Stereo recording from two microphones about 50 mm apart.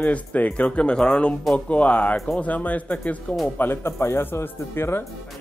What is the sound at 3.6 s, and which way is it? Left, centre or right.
Speech, left.